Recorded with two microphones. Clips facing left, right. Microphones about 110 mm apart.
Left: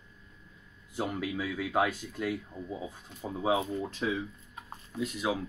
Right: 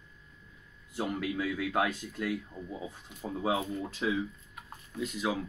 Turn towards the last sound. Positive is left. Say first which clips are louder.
# left 1 dB
turn(degrees=5)  # may be behind; listen again after turning